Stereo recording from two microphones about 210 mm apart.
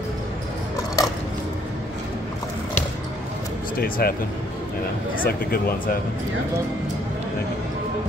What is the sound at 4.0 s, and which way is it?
Speech, 45° left (ahead or behind).